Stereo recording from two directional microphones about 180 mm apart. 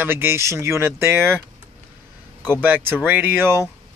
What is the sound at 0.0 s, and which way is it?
Speech, 15° right (ahead or behind).